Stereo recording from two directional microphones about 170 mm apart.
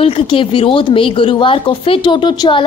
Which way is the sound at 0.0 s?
30° left (ahead or behind).